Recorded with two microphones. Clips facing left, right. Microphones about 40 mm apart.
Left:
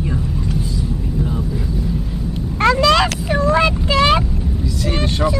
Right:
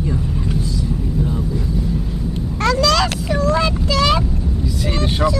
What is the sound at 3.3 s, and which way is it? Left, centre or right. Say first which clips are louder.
Vehicle: left 3 dB; left.